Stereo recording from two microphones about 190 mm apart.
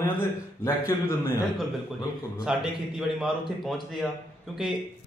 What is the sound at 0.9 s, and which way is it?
Speech, 15° left (ahead or behind).